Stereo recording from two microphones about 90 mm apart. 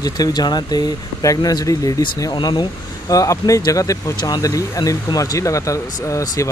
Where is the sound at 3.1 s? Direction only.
40° left (ahead or behind).